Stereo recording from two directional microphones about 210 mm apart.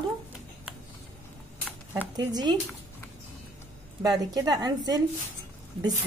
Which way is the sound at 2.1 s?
20° right (ahead or behind).